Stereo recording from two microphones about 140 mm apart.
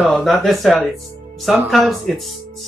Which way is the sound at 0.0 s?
Centre (ahead or behind).